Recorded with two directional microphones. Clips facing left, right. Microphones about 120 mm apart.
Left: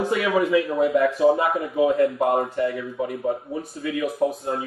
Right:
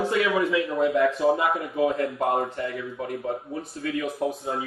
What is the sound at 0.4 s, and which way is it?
Speech, centre (ahead or behind).